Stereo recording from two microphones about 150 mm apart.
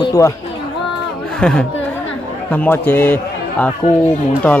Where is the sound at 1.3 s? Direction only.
5° left (ahead or behind).